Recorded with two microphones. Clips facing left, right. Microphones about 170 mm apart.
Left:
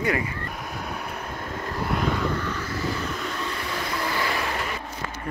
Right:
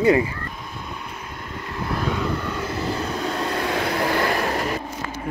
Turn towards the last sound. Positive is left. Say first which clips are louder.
# right 6 dB
turn(degrees=-45)  # may be behind; listen again after turning